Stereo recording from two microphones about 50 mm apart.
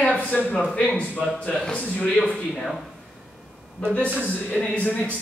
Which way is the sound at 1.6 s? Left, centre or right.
Centre.